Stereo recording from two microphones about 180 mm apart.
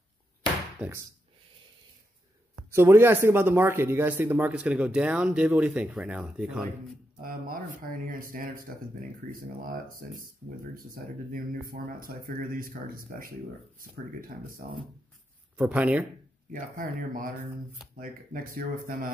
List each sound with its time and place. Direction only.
0.7 s speech: 10° right (ahead or behind)
2.7 s speech: 15° right (ahead or behind)
7.2 s speech: 50° right (ahead or behind)
11.3 s speech: 55° right (ahead or behind)
15.5 s speech: 10° right (ahead or behind)
16.5 s speech: 50° right (ahead or behind)